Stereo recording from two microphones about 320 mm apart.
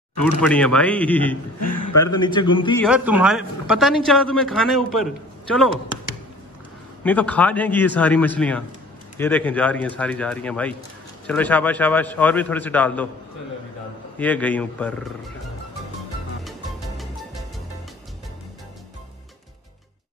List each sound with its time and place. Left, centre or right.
0.4 s a man's voice: centre
1.6 s a man's voice: left
2.2 s a man's voice: centre
2.8 s a man's voice: centre
7.0 s a man's voice: centre
14.1 s a man's voice: centre
16.4 s music: centre